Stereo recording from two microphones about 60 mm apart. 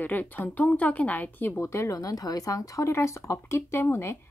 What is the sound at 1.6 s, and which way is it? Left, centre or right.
Speech, left.